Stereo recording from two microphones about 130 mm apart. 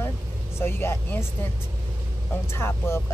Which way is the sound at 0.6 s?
20° left (ahead or behind).